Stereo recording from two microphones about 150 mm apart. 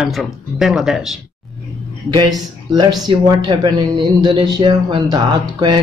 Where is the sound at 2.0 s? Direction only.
30° right (ahead or behind).